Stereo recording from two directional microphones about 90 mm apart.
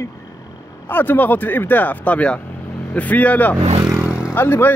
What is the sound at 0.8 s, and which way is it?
Speech, 20° left (ahead or behind).